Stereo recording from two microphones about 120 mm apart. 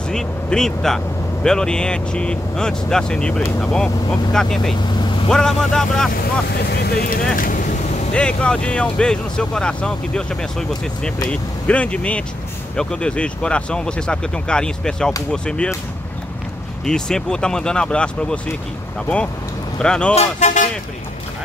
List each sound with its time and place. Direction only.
0.1 s speech: 5° left (ahead or behind)
8.1 s speech: 10° left (ahead or behind)
11.2 s speech: 10° left (ahead or behind)
16.8 s speech: 5° left (ahead or behind)
19.8 s speech: 10° left (ahead or behind)
20.2 s speech: 75° left (ahead or behind)